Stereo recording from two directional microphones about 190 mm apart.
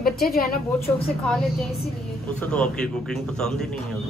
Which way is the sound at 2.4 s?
5° left (ahead or behind).